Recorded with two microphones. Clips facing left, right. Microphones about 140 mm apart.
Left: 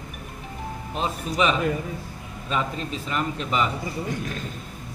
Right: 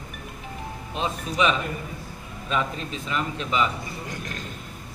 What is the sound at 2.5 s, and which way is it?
A man's voice, 40° left (ahead or behind).